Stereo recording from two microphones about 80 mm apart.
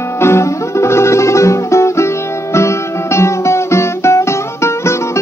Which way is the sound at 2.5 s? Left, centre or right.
Left.